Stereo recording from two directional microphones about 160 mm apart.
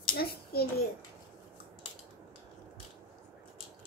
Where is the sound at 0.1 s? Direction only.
75° left (ahead or behind).